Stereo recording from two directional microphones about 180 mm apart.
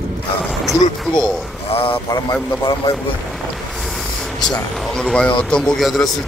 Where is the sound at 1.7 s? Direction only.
30° left (ahead or behind).